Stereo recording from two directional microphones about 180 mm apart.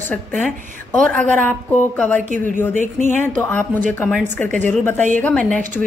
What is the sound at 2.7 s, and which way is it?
Speech, 40° right (ahead or behind).